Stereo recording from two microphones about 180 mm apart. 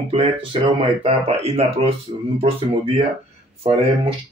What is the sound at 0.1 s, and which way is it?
Speech, 30° right (ahead or behind).